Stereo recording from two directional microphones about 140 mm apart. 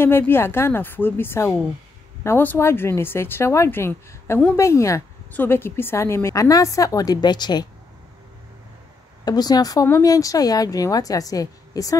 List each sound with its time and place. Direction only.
0.0 s a woman's voice: 15° left (ahead or behind); by 7.6 s 30° left (ahead or behind)
9.2 s speech: 30° left (ahead or behind)